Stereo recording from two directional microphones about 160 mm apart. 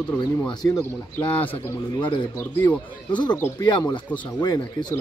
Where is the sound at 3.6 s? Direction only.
25° left (ahead or behind).